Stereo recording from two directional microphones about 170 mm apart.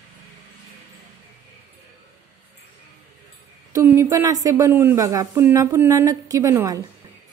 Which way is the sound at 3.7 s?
15° right (ahead or behind).